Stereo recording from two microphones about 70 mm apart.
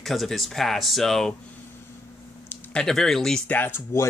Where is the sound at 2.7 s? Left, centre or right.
Centre.